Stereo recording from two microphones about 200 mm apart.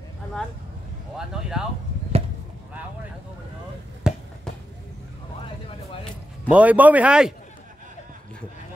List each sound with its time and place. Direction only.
1.1 s speech: 5° right (ahead or behind)
2.1 s chop: 30° right (ahead or behind)
4.1 s basketball bounce: 5° right (ahead or behind)
6.5 s speech: 5° right (ahead or behind)